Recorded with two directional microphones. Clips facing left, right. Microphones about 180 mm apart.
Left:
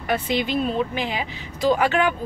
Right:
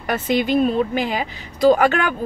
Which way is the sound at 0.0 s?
45° right (ahead or behind).